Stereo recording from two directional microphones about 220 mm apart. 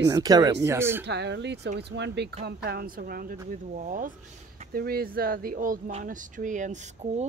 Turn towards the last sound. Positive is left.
turn(degrees=-30)  # may be behind; listen again after turning